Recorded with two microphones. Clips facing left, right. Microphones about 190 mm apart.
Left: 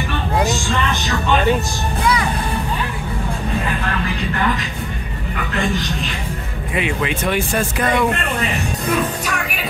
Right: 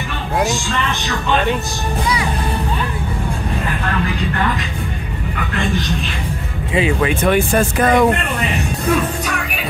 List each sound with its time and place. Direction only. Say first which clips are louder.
7.1 s speech: right 5 dB; 45° right (ahead or behind)